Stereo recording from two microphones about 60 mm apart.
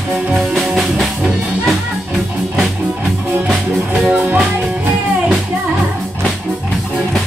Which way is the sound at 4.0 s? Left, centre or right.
Right.